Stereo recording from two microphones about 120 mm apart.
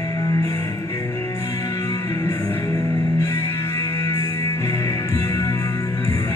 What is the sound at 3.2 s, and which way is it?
Music, 20° left (ahead or behind).